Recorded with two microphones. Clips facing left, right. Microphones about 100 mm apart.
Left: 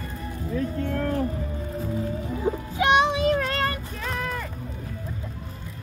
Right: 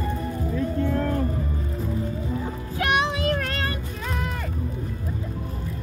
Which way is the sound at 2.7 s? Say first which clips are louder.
Left 3 dB; 20° left (ahead or behind).